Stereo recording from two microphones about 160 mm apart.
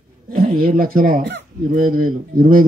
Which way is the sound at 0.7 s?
60° right (ahead or behind).